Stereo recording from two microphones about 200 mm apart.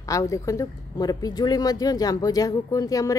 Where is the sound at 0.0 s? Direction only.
15° left (ahead or behind).